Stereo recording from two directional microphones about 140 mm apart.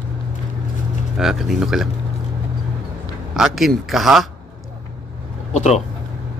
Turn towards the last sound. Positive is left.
turn(degrees=55)  # may be behind; listen again after turning